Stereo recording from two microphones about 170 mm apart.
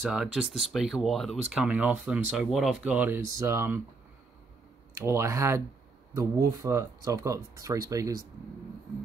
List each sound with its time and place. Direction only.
0.0 s speech: 5° right (ahead or behind)
4.9 s speech: 15° right (ahead or behind)